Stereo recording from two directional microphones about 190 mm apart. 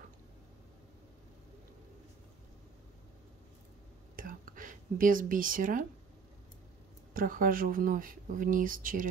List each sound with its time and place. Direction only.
4.2 s whispering: 45° right (ahead or behind)
7.2 s speech: 45° right (ahead or behind)